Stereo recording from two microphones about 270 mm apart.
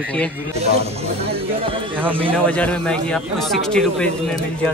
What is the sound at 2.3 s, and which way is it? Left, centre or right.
Speech, centre.